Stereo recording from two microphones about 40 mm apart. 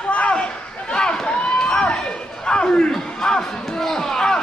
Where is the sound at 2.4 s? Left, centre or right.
Left.